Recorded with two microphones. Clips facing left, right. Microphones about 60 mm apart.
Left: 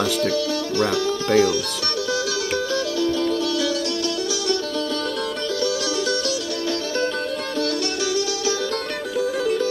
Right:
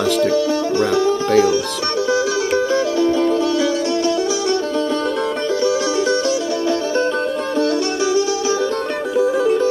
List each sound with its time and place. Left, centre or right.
0.0 s speech: right
2.5 s music: right
5.6 s music: right
7.5 s music: right